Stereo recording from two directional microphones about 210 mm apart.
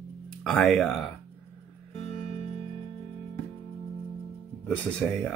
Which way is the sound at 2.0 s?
30° left (ahead or behind).